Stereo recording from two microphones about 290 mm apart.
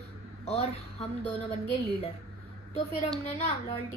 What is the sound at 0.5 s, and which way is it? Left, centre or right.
Speech, left.